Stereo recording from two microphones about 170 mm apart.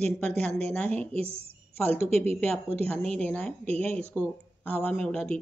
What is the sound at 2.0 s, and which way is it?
Speech, 40° right (ahead or behind).